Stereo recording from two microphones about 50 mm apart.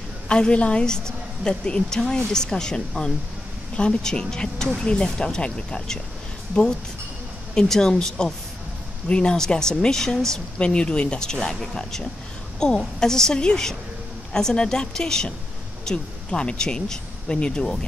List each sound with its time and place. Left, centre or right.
0.3 s a woman's voice: centre